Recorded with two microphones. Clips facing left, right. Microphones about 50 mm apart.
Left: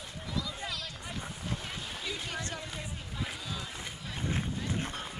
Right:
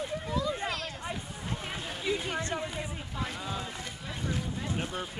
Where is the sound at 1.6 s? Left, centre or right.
Right.